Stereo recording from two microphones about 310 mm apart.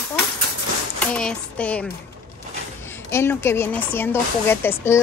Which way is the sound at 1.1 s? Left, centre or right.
Centre.